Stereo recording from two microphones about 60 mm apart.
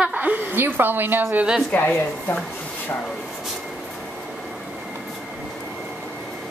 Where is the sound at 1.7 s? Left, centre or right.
Left.